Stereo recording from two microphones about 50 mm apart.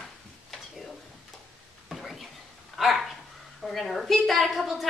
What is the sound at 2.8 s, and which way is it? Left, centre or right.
A woman's voice, centre.